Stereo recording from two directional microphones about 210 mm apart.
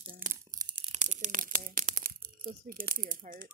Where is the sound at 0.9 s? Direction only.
35° right (ahead or behind).